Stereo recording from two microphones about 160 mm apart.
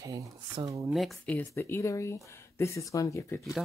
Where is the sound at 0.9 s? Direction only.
Centre (ahead or behind); by 3.4 s 20° left (ahead or behind).